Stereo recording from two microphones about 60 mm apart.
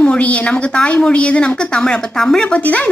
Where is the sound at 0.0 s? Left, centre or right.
Left.